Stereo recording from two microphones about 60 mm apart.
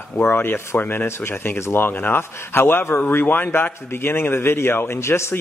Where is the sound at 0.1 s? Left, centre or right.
Left.